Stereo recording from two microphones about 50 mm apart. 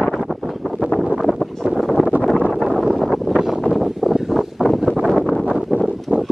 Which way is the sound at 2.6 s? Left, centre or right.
Centre.